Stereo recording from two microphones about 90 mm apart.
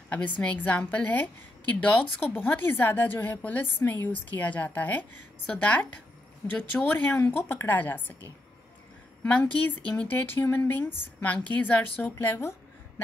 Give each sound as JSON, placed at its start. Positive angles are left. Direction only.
{"t": 0.4, "sound": "a woman's voice", "side_deg": 15}
{"t": 9.2, "sound": "speech", "side_deg": 15}